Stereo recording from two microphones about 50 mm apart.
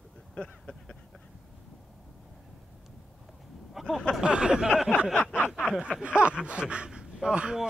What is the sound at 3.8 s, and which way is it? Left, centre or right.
Speech, centre.